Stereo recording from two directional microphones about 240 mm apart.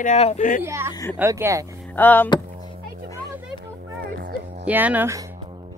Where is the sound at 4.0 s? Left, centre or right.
Right.